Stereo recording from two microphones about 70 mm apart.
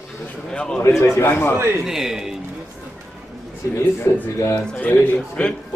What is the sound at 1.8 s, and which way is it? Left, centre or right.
Speech, centre.